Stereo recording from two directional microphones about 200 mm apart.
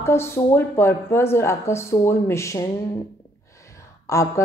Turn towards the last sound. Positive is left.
turn(degrees=15)  # may be behind; listen again after turning